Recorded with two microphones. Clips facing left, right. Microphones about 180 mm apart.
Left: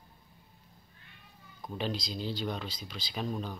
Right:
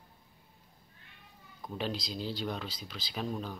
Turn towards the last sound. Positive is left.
turn(degrees=0)  # may be behind; listen again after turning